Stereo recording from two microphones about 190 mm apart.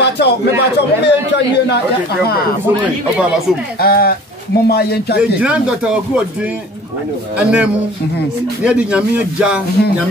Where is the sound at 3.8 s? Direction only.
55° left (ahead or behind).